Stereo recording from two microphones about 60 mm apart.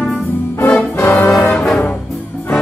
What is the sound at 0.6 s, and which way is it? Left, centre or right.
Music, left.